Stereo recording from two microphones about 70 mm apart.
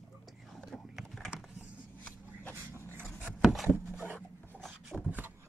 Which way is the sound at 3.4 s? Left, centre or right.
Centre.